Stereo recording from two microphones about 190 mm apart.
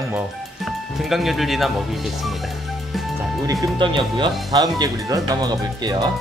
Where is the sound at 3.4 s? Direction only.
20° right (ahead or behind).